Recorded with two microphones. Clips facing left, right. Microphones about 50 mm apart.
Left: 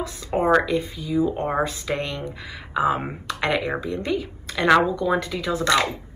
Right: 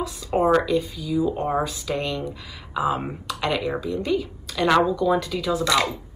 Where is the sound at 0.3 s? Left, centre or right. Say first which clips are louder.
Even; left.